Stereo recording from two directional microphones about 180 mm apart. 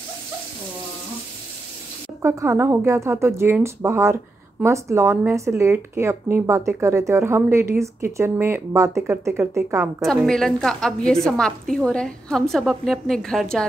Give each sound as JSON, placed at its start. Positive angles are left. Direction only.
{"t": 2.2, "sound": "speech", "side_deg": -15}
{"t": 10.0, "sound": "a woman's voice", "side_deg": 0}